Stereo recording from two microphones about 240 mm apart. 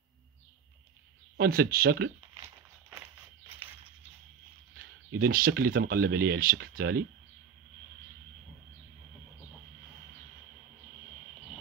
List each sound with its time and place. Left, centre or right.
1.3 s speech: right
5.2 s speech: right